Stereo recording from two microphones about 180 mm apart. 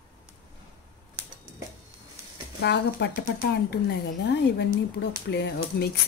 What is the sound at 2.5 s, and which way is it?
Speech, 70° left (ahead or behind).